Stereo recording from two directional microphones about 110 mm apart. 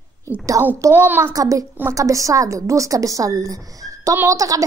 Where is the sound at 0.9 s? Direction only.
15° right (ahead or behind).